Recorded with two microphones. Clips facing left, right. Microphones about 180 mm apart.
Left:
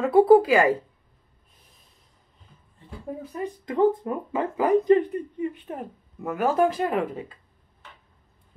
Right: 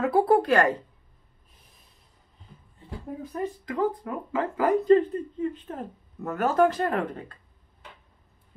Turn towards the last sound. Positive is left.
turn(degrees=5)  # may be behind; listen again after turning